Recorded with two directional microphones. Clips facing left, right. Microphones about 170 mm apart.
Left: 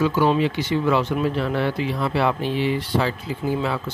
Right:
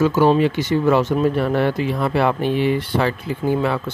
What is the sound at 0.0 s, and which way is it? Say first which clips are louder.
Speech: right 4 dB; 45° right (ahead or behind).